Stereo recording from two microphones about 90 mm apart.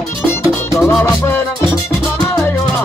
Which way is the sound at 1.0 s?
30° left (ahead or behind).